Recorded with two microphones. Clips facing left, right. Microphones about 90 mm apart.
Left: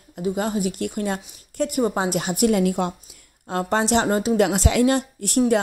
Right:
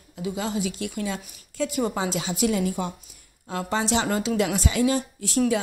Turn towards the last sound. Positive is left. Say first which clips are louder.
# left 4 dB
turn(degrees=65)  # may be behind; listen again after turning